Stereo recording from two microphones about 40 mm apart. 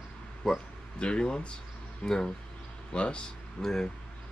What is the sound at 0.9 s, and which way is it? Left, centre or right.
Speech, left.